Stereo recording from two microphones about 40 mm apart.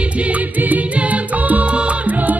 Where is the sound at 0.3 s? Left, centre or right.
Right.